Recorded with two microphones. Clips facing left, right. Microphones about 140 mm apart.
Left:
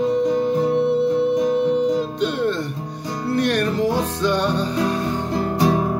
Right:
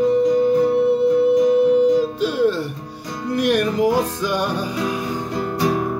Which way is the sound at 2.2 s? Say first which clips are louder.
Right 2 dB; 5° right (ahead or behind).